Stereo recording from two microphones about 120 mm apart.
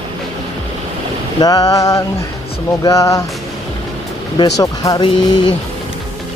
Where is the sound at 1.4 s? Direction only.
30° left (ahead or behind).